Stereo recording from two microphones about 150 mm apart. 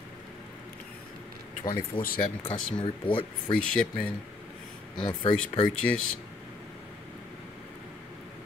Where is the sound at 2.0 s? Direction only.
75° left (ahead or behind).